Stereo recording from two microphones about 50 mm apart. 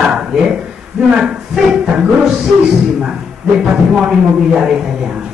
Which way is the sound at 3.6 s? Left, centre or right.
Centre.